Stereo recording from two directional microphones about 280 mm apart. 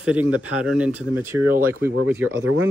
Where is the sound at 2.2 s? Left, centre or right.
Right.